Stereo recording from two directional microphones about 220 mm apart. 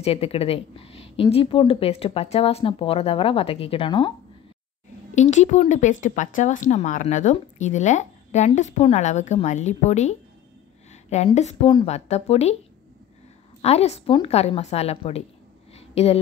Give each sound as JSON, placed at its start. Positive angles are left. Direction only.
{"t": 0.0, "sound": "a woman's voice", "side_deg": 25}
{"t": 5.1, "sound": "a woman's voice", "side_deg": 30}
{"t": 13.6, "sound": "a woman's voice", "side_deg": 30}